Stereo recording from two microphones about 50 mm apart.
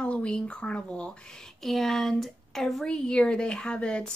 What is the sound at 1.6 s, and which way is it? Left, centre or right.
Speech, centre.